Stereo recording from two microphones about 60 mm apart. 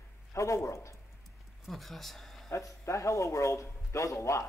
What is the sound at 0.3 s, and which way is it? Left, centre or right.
Speech, left.